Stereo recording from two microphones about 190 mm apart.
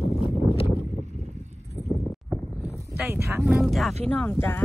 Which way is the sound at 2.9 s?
10° right (ahead or behind).